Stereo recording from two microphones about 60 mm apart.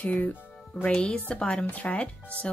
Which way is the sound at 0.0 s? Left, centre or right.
Left.